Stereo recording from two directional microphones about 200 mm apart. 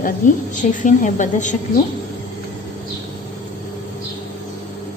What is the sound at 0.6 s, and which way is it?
A woman's voice, 40° left (ahead or behind).